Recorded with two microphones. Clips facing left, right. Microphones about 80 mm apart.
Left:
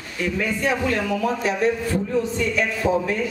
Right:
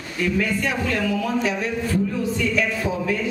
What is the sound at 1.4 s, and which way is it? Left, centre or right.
A man's voice, left.